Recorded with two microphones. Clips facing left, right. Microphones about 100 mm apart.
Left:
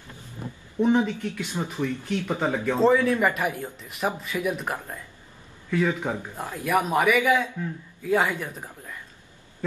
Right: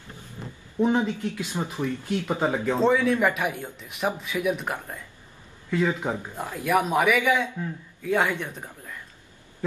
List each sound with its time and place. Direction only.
0.7 s speech: 15° right (ahead or behind)
2.8 s a man's voice: centre (ahead or behind)
5.7 s speech: 15° right (ahead or behind)
6.6 s a man's voice: centre (ahead or behind)